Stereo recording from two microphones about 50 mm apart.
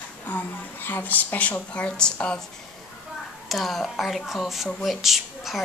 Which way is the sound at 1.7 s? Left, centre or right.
Left.